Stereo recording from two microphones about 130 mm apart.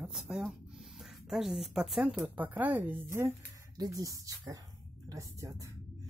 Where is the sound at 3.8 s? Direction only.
25° right (ahead or behind).